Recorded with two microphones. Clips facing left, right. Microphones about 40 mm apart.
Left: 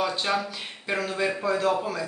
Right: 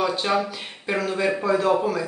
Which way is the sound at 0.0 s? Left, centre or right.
Centre.